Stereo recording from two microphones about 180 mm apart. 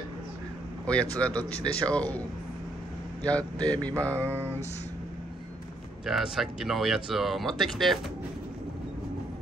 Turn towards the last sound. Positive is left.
turn(degrees=0)  # may be behind; listen again after turning